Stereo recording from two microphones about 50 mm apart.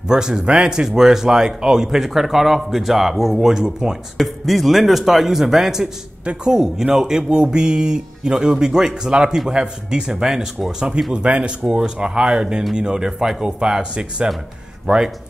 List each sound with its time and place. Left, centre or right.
0.1 s speech: centre
4.2 s speech: centre
11.1 s speech: right